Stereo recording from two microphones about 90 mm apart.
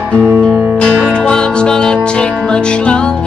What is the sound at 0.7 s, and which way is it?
Music, 10° left (ahead or behind).